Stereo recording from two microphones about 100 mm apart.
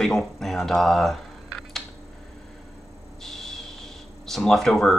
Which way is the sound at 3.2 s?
5° left (ahead or behind).